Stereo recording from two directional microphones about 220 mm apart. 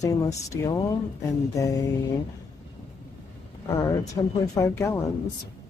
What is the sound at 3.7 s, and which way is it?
Speech, 15° left (ahead or behind).